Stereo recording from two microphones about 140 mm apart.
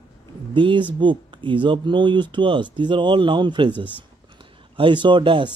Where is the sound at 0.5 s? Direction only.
35° right (ahead or behind).